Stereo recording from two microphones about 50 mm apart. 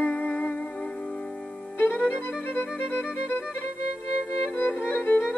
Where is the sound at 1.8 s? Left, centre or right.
Left.